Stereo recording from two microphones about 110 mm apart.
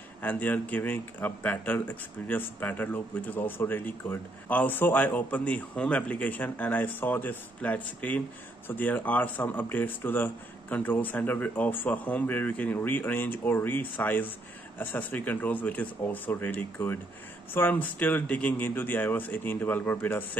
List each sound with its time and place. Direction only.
0.2 s speech: 15° left (ahead or behind)